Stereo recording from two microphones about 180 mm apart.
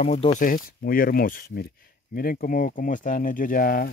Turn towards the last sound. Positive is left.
turn(degrees=55)  # may be behind; listen again after turning